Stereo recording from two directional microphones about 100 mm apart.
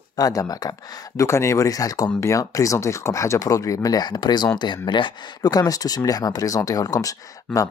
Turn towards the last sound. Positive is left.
turn(degrees=35)  # may be behind; listen again after turning